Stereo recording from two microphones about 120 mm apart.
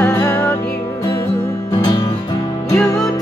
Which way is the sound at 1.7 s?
40° left (ahead or behind).